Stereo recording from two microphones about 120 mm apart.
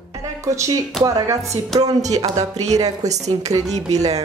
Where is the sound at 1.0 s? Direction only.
30° right (ahead or behind).